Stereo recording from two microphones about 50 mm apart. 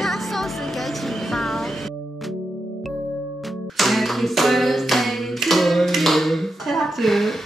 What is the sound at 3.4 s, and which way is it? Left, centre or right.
Clapping, centre.